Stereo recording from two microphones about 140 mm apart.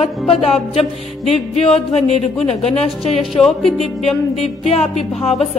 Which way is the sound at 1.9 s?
50° left (ahead or behind).